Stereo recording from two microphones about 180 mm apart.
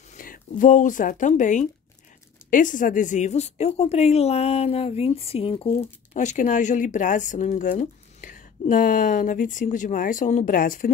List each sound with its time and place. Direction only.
0.1 s speech: 50° left (ahead or behind)